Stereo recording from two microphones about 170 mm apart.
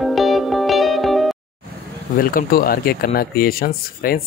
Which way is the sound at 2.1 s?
60° left (ahead or behind).